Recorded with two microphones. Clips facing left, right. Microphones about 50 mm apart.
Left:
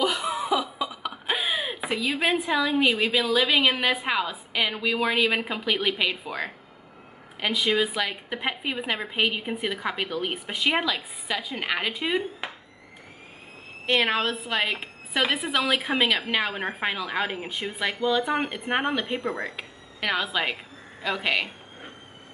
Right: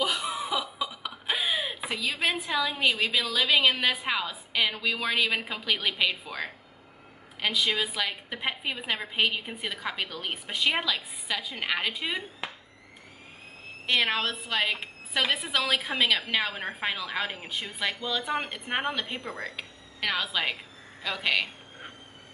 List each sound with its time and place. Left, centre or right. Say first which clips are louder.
0.0 s cough: left 3 dB; centre
1.2 s a sound: left 1 dB; centre
1.9 s a woman's voice: left 5 dB; centre
13.8 s a woman's voice: left 3 dB; left
14.2 s a woman's voice: left 2 dB; centre